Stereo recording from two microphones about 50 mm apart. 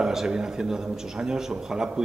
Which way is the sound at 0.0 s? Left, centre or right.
Centre.